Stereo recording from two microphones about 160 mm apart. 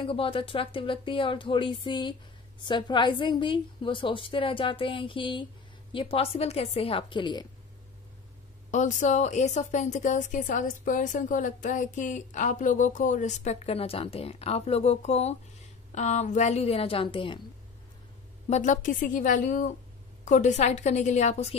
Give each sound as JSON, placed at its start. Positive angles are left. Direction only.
{"t": 0.0, "sound": "a woman's voice", "side_deg": 35}
{"t": 8.7, "sound": "a woman's voice", "side_deg": 50}
{"t": 18.5, "sound": "a woman's voice", "side_deg": 50}